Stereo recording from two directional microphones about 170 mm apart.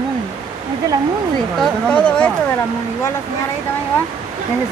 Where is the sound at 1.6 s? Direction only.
5° left (ahead or behind).